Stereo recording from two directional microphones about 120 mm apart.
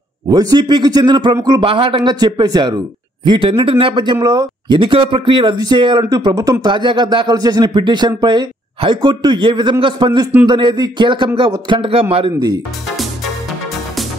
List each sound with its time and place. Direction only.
0.3 s speech: 35° right (ahead or behind)
1.6 s speech: 45° right (ahead or behind)
3.3 s speech: 50° right (ahead or behind)